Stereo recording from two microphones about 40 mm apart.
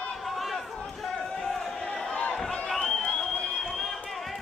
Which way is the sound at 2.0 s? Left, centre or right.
Centre.